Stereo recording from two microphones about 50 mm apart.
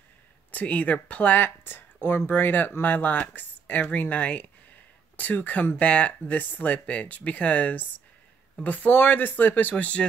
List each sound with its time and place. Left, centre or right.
0.5 s speech: left